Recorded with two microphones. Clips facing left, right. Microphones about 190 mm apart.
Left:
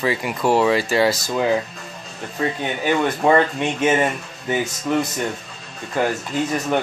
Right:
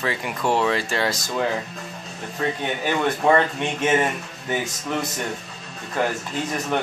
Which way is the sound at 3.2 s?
5° left (ahead or behind).